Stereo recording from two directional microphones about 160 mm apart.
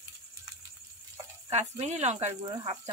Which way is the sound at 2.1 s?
30° right (ahead or behind).